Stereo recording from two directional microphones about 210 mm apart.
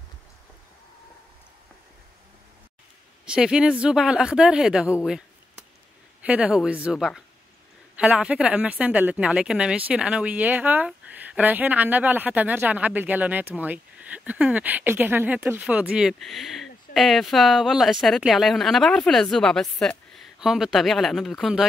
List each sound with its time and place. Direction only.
3.3 s a woman's voice: 5° right (ahead or behind)
6.2 s a woman's voice: 5° right (ahead or behind)